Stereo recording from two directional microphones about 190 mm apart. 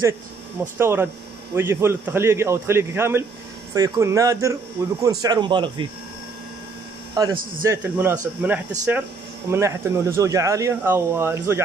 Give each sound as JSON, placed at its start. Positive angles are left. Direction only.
{"t": 0.7, "sound": "speech", "side_deg": -10}
{"t": 7.2, "sound": "speech", "side_deg": -20}